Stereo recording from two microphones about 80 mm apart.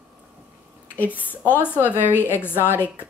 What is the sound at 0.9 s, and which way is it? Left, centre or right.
Speech, left.